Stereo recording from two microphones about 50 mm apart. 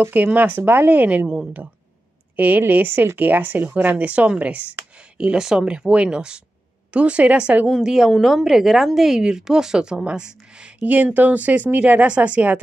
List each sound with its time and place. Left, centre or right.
0.1 s speech: right
2.3 s a woman's voice: right
7.7 s a woman's voice: centre
8.1 s a woman's voice: centre
10.8 s speech: right